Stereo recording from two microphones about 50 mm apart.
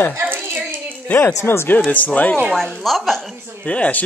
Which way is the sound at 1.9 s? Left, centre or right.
Left.